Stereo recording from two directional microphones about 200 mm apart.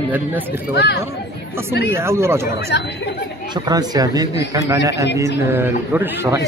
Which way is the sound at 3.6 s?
20° right (ahead or behind).